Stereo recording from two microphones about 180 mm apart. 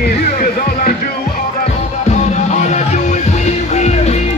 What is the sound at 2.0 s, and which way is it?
Music, 40° left (ahead or behind).